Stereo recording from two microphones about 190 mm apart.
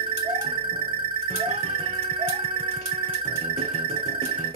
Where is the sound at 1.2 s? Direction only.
35° right (ahead or behind).